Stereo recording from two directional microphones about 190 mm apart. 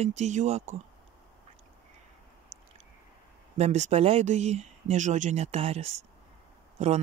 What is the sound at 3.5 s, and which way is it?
Speech, 35° right (ahead or behind).